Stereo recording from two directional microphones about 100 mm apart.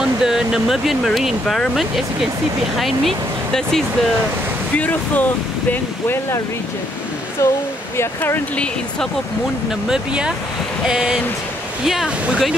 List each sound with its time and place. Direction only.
0.0 s speech: 5° right (ahead or behind)
2.8 s speech: centre (ahead or behind)
4.7 s speech: 15° left (ahead or behind)
7.4 s speech: 30° left (ahead or behind)
9.8 s speech: 10° right (ahead or behind)